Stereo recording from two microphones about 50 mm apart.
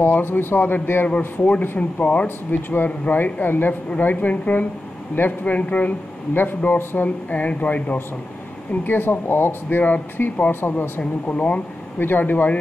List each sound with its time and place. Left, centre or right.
0.0 s speech: left
1.0 s speech: left
2.2 s speech: left
8.8 s speech: left
11.2 s speech: left
12.0 s speech: left